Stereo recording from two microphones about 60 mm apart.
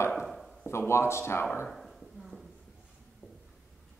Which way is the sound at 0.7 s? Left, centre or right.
Left.